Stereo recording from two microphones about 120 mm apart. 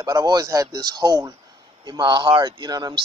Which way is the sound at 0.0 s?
35° right (ahead or behind).